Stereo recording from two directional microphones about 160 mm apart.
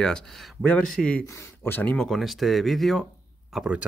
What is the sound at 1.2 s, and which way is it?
Speech, 20° left (ahead or behind).